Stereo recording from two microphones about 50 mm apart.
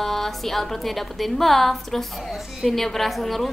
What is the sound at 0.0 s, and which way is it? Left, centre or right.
A woman's voice, centre.